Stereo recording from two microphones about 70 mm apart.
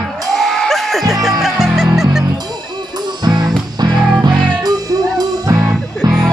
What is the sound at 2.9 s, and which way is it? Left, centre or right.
Music, right.